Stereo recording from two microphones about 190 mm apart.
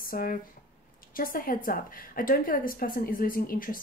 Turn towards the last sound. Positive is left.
turn(degrees=50)  # may be behind; listen again after turning